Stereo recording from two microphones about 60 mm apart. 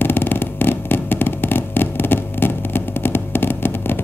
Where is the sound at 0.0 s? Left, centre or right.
Left.